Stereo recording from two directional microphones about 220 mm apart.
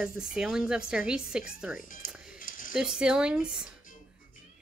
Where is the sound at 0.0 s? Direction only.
5° right (ahead or behind).